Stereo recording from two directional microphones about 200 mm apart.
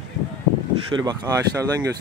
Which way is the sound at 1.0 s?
20° right (ahead or behind).